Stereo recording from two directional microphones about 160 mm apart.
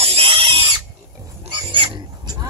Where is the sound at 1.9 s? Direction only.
25° right (ahead or behind).